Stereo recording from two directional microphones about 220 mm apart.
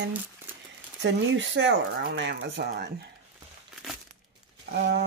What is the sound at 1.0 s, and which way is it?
Speech, 55° right (ahead or behind).